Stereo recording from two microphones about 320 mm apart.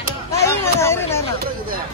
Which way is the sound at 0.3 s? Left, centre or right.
Centre.